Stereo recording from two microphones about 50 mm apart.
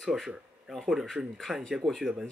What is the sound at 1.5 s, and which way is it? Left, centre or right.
Speech, centre.